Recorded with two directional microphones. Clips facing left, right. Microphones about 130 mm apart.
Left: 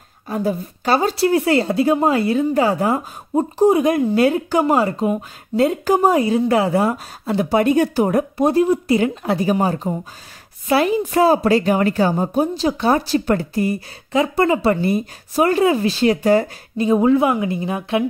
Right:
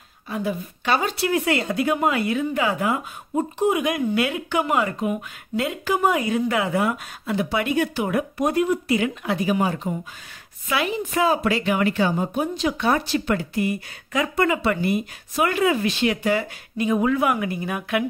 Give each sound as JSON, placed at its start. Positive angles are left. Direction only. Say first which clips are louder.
{"t": 0.3, "sound": "speech", "louder": "left 5 dB", "side_deg": 40}